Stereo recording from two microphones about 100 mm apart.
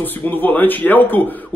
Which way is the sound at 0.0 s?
20° left (ahead or behind).